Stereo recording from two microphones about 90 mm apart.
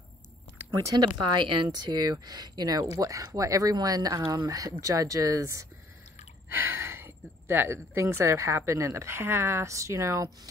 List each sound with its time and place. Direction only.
1.0 s speech: 60° right (ahead or behind); by 10.3 s 35° right (ahead or behind)